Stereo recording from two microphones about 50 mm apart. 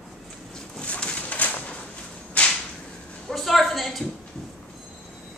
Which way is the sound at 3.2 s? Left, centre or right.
Centre.